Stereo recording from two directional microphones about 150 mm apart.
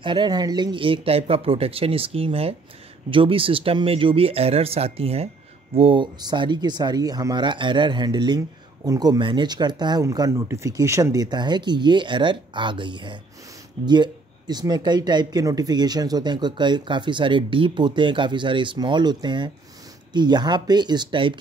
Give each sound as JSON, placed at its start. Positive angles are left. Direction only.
{"t": 0.0, "sound": "speech", "side_deg": -30}